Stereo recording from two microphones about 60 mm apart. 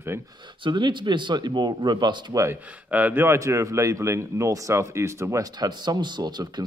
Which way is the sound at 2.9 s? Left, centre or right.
Right.